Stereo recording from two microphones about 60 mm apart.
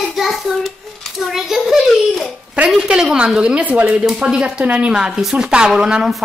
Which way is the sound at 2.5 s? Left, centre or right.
Centre.